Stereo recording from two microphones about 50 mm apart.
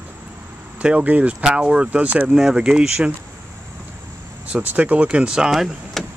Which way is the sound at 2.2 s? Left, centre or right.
Centre.